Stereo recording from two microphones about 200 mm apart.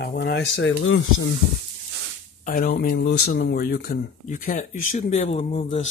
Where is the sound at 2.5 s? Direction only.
45° left (ahead or behind).